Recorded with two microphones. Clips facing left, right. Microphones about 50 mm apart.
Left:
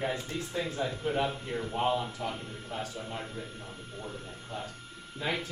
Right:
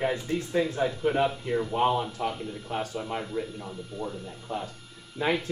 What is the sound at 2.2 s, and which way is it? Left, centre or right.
Speech, right.